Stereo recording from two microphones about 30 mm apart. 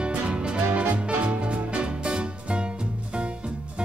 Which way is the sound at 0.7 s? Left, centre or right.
Right.